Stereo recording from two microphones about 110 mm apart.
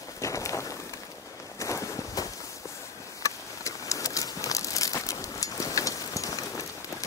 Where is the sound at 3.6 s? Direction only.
30° left (ahead or behind).